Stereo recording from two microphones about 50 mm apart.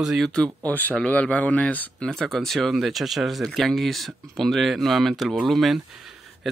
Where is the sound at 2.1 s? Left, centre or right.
Centre.